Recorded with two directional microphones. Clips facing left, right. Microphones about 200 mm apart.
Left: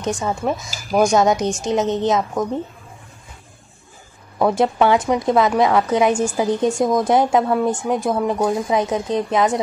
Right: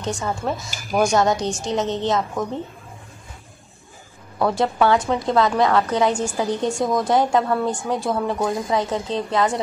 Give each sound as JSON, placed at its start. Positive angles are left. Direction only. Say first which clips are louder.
{"t": 0.0, "sound": "a woman's voice", "louder": "left 3 dB", "side_deg": 20}
{"t": 4.4, "sound": "a woman's voice", "louder": "left 3 dB", "side_deg": 20}